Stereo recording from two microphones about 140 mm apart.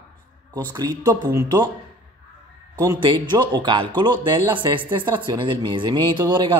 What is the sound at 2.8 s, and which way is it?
Speech, 30° right (ahead or behind).